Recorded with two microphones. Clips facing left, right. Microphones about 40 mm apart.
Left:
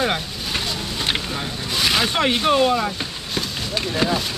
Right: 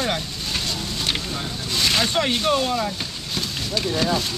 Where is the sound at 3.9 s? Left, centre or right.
Centre.